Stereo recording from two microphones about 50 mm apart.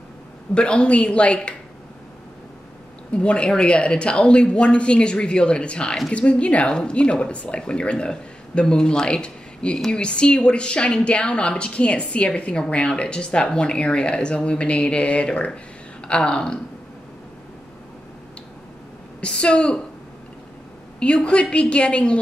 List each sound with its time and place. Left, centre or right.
0.6 s a woman's voice: left
3.1 s a woman's voice: left
19.2 s a woman's voice: centre
21.0 s a woman's voice: left